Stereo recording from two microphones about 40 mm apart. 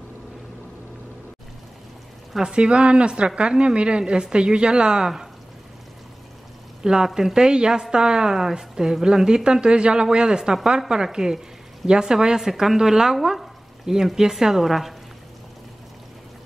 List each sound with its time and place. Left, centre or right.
2.5 s speech: right
6.8 s speech: centre